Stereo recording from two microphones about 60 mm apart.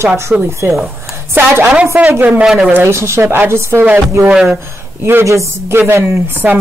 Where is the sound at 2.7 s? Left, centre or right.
Right.